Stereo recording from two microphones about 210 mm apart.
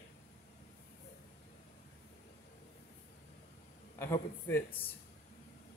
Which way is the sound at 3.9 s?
10° left (ahead or behind).